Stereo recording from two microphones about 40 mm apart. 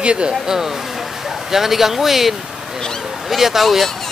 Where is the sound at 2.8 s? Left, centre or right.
Centre.